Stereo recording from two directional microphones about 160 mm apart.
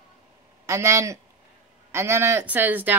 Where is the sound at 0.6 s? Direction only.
20° right (ahead or behind).